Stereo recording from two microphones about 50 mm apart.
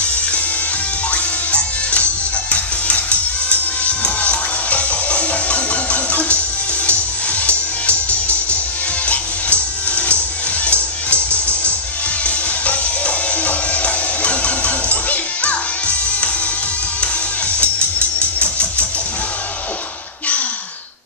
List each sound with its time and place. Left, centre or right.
1.1 s music: left
17.6 s music: left